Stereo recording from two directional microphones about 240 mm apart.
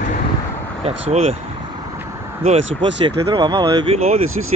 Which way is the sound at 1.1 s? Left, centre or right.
Right.